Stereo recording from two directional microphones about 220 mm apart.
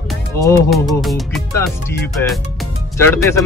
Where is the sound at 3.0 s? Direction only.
10° left (ahead or behind).